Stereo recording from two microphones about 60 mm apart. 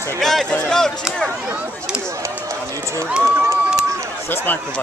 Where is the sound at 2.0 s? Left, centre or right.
Right.